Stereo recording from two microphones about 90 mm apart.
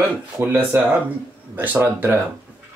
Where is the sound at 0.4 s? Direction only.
20° right (ahead or behind).